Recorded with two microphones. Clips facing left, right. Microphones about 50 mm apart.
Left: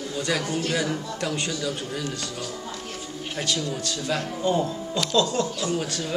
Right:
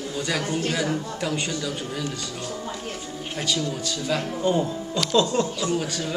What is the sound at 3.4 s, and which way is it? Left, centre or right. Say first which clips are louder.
A man's voice: right 1 dB; centre.